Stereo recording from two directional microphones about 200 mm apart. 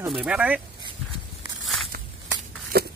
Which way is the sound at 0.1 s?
5° right (ahead or behind).